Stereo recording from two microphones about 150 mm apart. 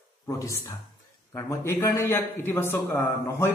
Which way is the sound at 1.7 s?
15° left (ahead or behind).